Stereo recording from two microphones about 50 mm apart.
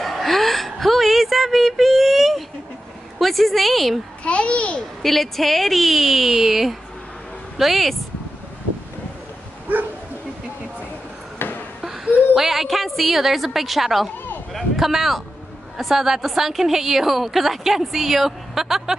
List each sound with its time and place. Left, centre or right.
0.0 s whimper: centre
3.2 s a woman's voice: centre
4.2 s a child's voice: left
5.0 s a woman's voice: centre
9.7 s bow-wow: right
11.3 s a sound: left
11.8 s a woman's voice: centre
14.5 s a sound: centre
15.8 s a woman's voice: centre